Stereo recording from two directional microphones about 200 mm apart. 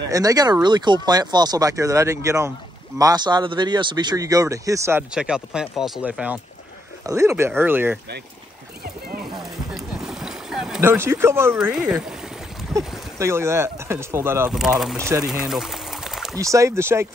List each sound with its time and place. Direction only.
0.1 s speech: 20° right (ahead or behind)
8.8 s horse: 50° right (ahead or behind)
9.4 s boat: centre (ahead or behind)
13.2 s speech: 15° right (ahead or behind)
15.2 s pour: centre (ahead or behind)
16.3 s speech: 15° right (ahead or behind)